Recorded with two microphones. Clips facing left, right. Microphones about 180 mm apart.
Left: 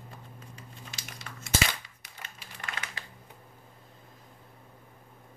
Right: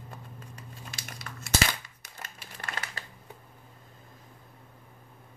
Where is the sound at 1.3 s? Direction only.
45° right (ahead or behind).